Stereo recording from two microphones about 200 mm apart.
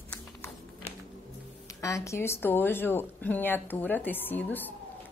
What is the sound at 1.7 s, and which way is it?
A woman's voice, 15° left (ahead or behind).